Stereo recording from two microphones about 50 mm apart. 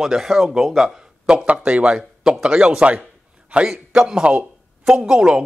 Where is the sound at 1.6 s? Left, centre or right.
Right.